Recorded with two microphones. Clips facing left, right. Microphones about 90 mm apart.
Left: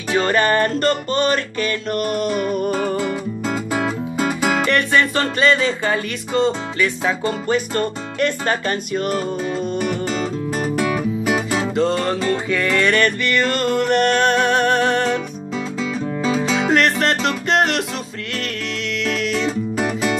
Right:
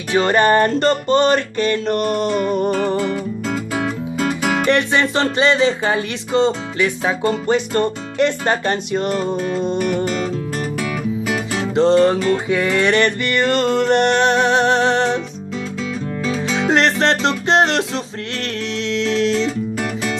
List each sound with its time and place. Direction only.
0.1 s music: 20° right (ahead or behind)
2.7 s music: 10° left (ahead or behind)
4.6 s music: 20° right (ahead or behind)
11.0 s music: 15° left (ahead or behind)
11.7 s music: 30° right (ahead or behind)
12.4 s music: 20° right (ahead or behind)
16.2 s music: 10° left (ahead or behind)
16.7 s music: 25° right (ahead or behind)
19.8 s music: 20° left (ahead or behind)